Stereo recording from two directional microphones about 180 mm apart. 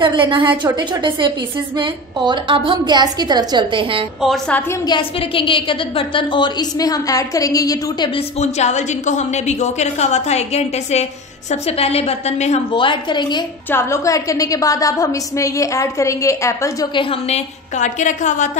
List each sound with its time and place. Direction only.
0.0 s a woman's voice: 25° right (ahead or behind)
4.2 s a woman's voice: 5° left (ahead or behind)
4.8 s a woman's voice: 25° left (ahead or behind)
8.4 s a woman's voice: 40° left (ahead or behind)
13.7 s a woman's voice: 15° left (ahead or behind)
17.1 s a woman's voice: 40° left (ahead or behind)